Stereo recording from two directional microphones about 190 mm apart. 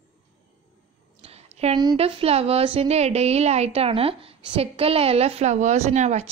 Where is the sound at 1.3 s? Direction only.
35° right (ahead or behind).